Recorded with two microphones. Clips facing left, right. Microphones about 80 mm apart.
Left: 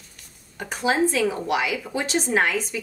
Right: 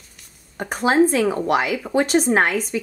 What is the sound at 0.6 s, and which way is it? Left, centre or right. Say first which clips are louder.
Speech: right 5 dB; right.